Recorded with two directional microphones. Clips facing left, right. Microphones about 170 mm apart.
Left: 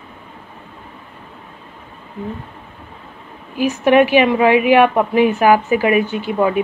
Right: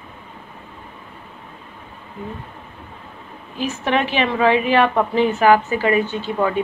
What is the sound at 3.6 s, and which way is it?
A woman's voice, 10° left (ahead or behind).